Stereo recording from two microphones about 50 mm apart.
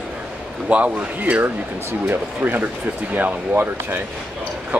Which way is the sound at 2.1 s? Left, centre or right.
Right.